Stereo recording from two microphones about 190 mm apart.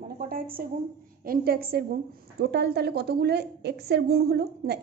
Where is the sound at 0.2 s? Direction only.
50° right (ahead or behind).